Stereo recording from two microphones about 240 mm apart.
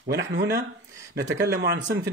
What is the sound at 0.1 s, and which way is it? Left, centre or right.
A man's voice, right.